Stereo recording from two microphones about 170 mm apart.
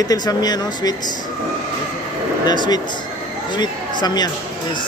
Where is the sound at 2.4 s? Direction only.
25° left (ahead or behind).